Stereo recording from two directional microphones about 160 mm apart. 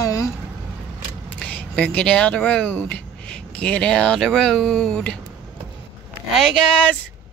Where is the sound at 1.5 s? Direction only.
5° left (ahead or behind).